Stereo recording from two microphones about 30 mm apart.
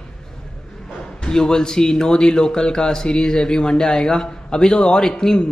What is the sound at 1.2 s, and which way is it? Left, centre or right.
A man's voice, left.